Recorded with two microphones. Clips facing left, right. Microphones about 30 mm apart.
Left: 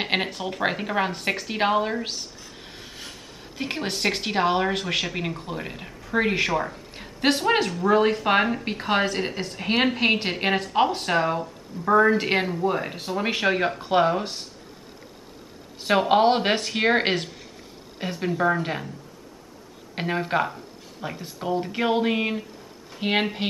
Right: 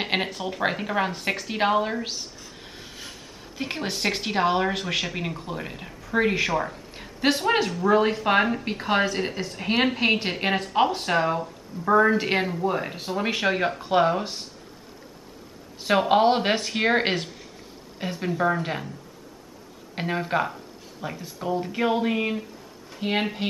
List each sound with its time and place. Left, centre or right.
0.0 s speech: centre
15.8 s speech: centre
20.0 s speech: centre